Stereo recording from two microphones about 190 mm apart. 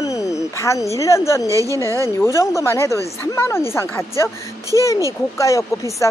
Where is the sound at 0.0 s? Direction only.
15° left (ahead or behind).